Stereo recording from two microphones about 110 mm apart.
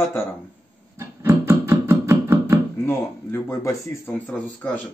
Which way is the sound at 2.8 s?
20° left (ahead or behind).